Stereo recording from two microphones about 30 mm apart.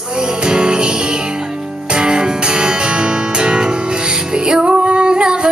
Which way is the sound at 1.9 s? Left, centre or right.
Right.